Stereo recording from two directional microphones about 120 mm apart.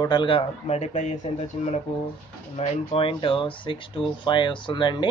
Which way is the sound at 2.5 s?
55° left (ahead or behind).